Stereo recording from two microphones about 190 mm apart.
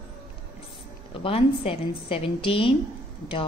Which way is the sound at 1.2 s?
30° left (ahead or behind).